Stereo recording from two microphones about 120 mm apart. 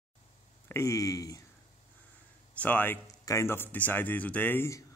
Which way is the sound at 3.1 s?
25° left (ahead or behind).